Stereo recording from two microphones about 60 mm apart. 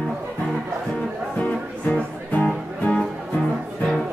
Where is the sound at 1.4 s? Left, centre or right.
Left.